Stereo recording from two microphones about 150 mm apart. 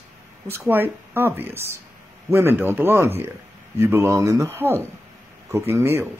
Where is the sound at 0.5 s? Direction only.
15° right (ahead or behind).